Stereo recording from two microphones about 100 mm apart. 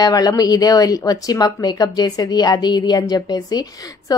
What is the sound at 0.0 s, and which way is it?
A woman's voice, 40° left (ahead or behind).